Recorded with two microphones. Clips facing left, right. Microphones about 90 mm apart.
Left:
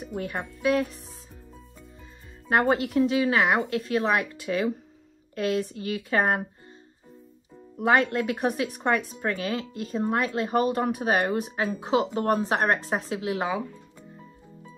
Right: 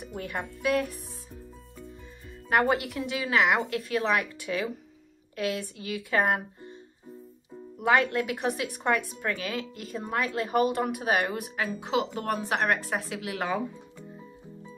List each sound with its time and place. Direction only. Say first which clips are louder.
0.0 s music: left 3 dB; 35° left (ahead or behind)
2.5 s speech: left 3 dB; 30° left (ahead or behind)
7.7 s speech: left 2 dB; 30° left (ahead or behind)